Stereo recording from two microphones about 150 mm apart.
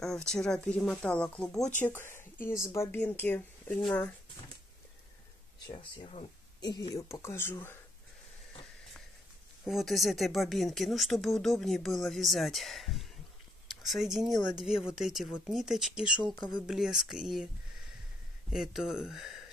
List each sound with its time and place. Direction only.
0.0 s speech: 5° left (ahead or behind)
1.8 s speech: 15° left (ahead or behind)
5.7 s speech: 35° left (ahead or behind); by 7.8 s 15° left (ahead or behind)
9.7 s speech: centre (ahead or behind)